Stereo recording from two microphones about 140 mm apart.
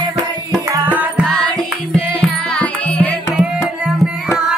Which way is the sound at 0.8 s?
10° right (ahead or behind).